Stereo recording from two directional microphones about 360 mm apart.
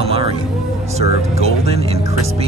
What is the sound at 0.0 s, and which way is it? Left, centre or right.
Music, centre.